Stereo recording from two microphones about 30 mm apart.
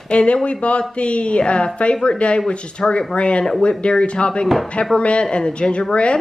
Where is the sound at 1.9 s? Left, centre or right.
Left.